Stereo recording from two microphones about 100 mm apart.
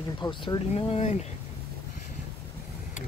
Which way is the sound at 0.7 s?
85° left.